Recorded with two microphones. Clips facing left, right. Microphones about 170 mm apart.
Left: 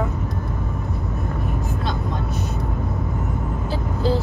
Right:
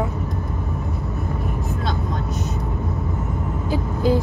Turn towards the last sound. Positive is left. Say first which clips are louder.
# right 2 dB
turn(degrees=-15)  # may be behind; listen again after turning